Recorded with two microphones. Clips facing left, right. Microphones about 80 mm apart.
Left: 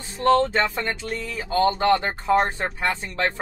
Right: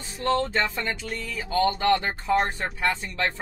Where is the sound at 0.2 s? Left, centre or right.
Left.